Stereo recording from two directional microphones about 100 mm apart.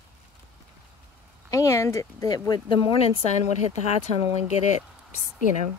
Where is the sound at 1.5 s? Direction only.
30° left (ahead or behind).